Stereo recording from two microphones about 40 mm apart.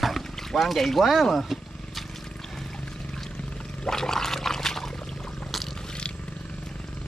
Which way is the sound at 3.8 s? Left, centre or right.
Centre.